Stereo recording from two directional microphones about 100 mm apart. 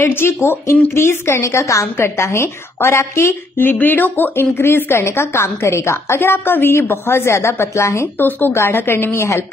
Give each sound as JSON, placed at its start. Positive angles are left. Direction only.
{"t": 0.0, "sound": "a woman's voice", "side_deg": 25}